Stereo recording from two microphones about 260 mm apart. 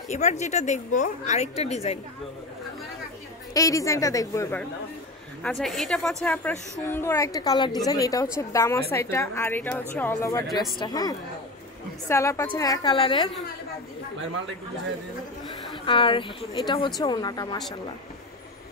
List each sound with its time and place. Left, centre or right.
0.1 s a woman's voice: left
3.5 s a woman's voice: centre
15.8 s a woman's voice: centre